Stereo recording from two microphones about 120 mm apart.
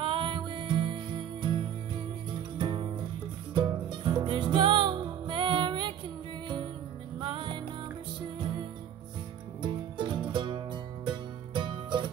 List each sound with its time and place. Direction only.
0.0 s music: 40° right (ahead or behind)
7.2 s music: 45° right (ahead or behind)
9.6 s music: 40° right (ahead or behind)